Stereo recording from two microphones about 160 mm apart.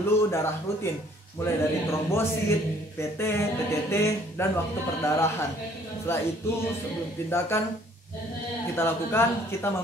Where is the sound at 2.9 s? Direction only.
15° left (ahead or behind).